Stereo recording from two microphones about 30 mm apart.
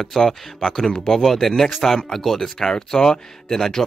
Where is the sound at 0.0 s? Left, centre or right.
Centre.